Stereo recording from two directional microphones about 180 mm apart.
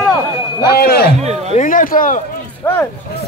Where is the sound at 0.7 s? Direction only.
60° left (ahead or behind).